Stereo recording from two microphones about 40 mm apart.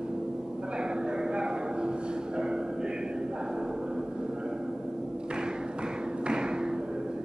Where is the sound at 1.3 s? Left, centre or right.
Right.